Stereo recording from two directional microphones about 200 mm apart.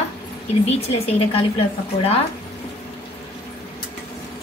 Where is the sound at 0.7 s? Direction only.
30° left (ahead or behind).